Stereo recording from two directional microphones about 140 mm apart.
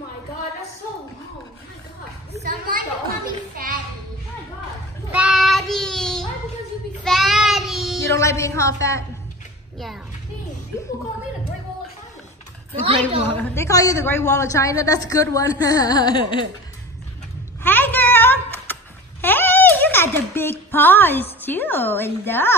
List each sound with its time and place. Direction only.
2.4 s a sound: 90° right
5.1 s child singing: 5° right (ahead or behind)
8.1 s a woman's voice: 20° left (ahead or behind)
13.3 s a woman's voice: 10° left (ahead or behind)
13.7 s a woman's voice: 25° left (ahead or behind)
17.6 s a sound: 15° left (ahead or behind)